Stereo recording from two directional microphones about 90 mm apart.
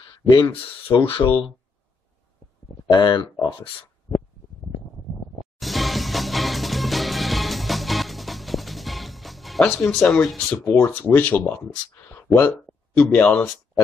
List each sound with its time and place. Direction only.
0.0 s a sound: 55° left (ahead or behind)
0.5 s speech: 75° left (ahead or behind)
2.9 s speech: 55° left (ahead or behind)
5.6 s music: centre (ahead or behind)
10.1 s speech: 5° left (ahead or behind)